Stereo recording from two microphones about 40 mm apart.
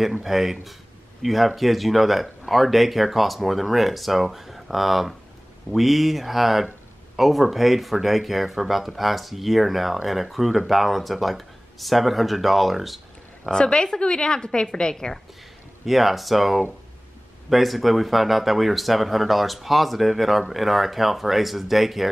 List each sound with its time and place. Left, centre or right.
0.0 s speech: centre
13.5 s a woman's voice: left
15.8 s speech: centre